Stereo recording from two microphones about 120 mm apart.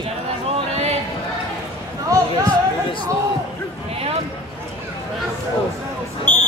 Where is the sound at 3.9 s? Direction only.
55° right (ahead or behind).